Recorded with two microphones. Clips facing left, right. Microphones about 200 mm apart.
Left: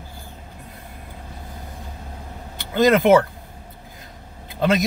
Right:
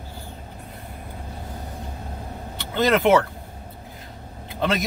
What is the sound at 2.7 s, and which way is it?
Speech, 15° left (ahead or behind).